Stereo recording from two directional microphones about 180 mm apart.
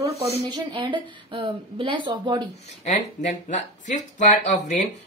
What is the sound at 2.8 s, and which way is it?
Speech, 40° left (ahead or behind).